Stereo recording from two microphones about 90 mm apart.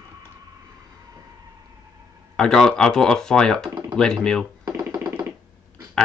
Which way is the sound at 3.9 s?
5° left (ahead or behind).